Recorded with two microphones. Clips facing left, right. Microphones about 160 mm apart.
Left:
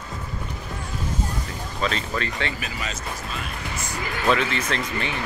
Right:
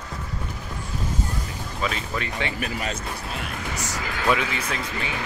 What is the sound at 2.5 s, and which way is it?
Speech, 60° right (ahead or behind).